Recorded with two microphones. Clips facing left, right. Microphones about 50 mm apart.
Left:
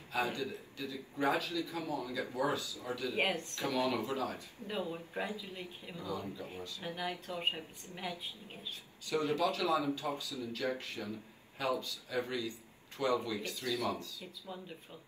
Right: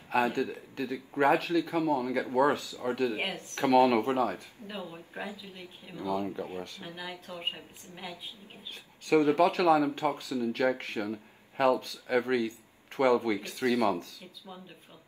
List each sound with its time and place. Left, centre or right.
0.1 s speech: right
4.9 s a man's voice: centre
5.9 s speech: right
9.0 s speech: right